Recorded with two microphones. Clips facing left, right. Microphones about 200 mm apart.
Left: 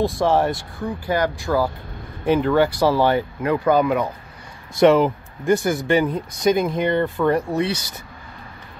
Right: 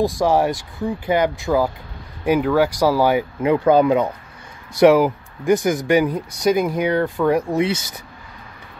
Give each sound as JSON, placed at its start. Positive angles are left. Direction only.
{"t": 0.0, "sound": "speech", "side_deg": -10}
{"t": 2.2, "sound": "speech", "side_deg": -5}
{"t": 3.7, "sound": "speech", "side_deg": -25}
{"t": 4.7, "sound": "speech", "side_deg": -5}
{"t": 7.5, "sound": "speech", "side_deg": -20}